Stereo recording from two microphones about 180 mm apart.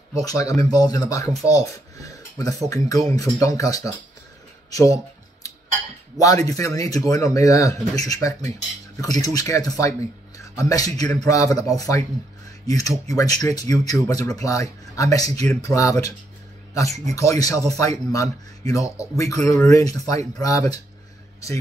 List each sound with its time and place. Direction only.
0.2 s speech: 20° left (ahead or behind)
4.6 s a sound: 20° left (ahead or behind)
6.1 s speech: 20° left (ahead or behind)